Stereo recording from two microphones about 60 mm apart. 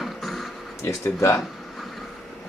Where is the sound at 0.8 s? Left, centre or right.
Left.